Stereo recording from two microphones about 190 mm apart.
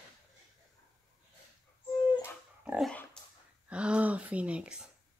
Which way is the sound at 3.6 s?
5° right (ahead or behind).